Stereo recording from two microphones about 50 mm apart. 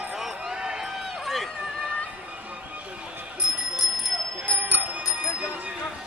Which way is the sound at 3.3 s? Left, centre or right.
Centre.